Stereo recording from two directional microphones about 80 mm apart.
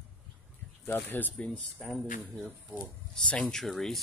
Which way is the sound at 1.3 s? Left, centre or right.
Centre.